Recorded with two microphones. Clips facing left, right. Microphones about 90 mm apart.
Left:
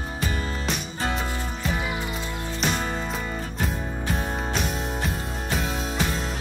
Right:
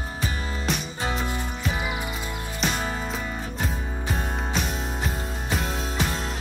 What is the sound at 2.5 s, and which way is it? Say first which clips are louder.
Music: left 1 dB; centre (ahead or behind).